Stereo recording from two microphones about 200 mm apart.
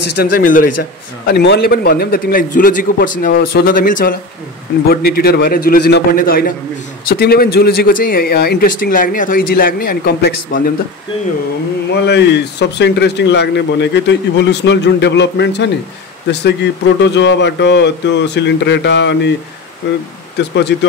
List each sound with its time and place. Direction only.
0.1 s speech: 45° left (ahead or behind)
1.2 s speech: 55° left (ahead or behind)
12.1 s speech: 55° left (ahead or behind)
20.3 s speech: 60° left (ahead or behind)